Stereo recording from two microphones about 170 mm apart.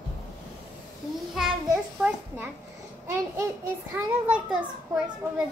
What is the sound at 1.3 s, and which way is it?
Child singing, 5° right (ahead or behind).